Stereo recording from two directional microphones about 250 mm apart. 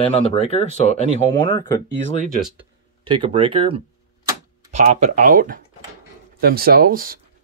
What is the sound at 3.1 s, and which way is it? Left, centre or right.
Speech, right.